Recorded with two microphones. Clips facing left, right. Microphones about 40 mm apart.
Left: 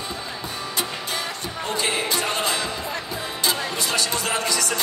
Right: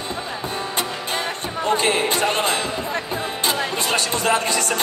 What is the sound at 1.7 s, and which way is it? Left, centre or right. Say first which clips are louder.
Music: right 5 dB; right.